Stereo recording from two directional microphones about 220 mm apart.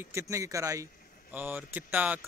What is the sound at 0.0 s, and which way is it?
Speech, 15° right (ahead or behind).